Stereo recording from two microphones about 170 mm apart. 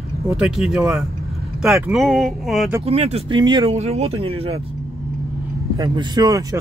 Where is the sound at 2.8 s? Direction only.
35° right (ahead or behind).